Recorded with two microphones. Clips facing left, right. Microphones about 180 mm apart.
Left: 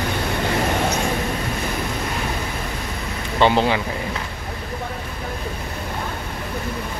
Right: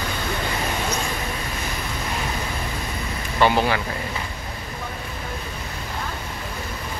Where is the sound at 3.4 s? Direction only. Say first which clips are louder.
Left 2 dB; 20° left (ahead or behind).